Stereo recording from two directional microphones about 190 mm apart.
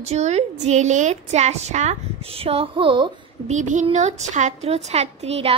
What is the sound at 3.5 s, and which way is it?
A child's voice, 40° right (ahead or behind).